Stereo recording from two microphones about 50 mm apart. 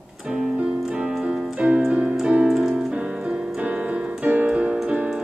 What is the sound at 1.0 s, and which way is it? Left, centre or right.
Keyboard, centre.